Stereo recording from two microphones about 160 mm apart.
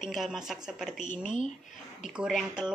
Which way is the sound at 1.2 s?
50° left (ahead or behind).